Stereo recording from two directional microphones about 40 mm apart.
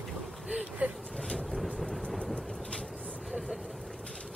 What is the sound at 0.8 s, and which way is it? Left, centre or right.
Vehicle, right.